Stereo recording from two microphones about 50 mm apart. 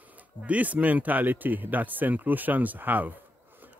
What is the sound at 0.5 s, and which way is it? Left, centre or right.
A man's voice, right.